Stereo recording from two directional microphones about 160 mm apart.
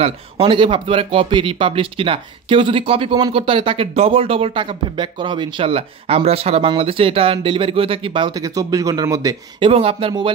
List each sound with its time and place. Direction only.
0.0 s speech: 35° right (ahead or behind)
9.7 s speech: 35° right (ahead or behind)